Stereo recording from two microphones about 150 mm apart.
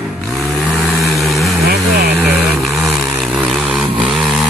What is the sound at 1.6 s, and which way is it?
Vehicle, 90° right.